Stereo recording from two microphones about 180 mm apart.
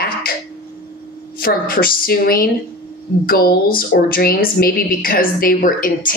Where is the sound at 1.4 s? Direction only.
55° left (ahead or behind).